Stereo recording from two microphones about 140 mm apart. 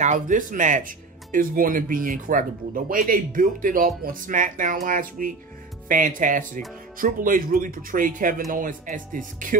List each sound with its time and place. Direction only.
0.0 s speech: 65° right (ahead or behind)
4.8 s speech: 85° right
5.9 s speech: 70° right (ahead or behind)